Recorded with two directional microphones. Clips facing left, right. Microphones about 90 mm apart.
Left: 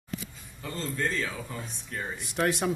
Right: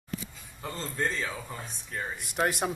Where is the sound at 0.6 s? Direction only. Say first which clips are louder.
Left 1 dB; 30° right (ahead or behind).